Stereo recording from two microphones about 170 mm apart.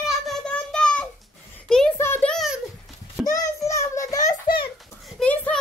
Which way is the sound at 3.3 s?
20° left (ahead or behind).